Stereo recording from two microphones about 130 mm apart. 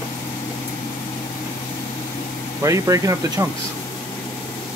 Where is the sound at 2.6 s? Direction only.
25° right (ahead or behind).